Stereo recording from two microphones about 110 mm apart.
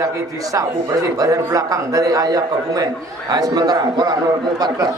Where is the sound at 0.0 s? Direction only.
30° right (ahead or behind).